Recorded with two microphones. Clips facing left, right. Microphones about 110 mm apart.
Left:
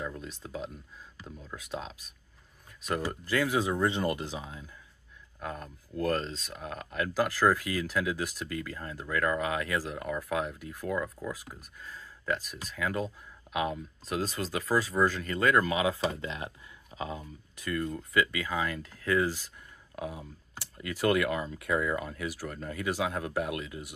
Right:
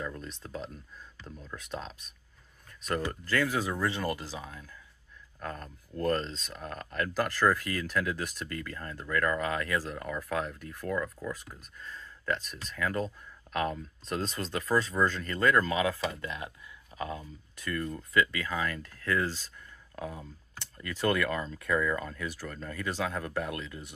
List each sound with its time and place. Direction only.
0.0 s speech: 10° left (ahead or behind)
5.4 s speech: 10° left (ahead or behind)